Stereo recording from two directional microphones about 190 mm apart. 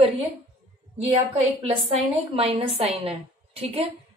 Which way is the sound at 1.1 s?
30° right (ahead or behind).